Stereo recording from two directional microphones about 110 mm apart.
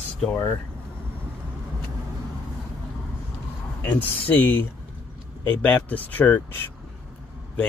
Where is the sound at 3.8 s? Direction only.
15° left (ahead or behind).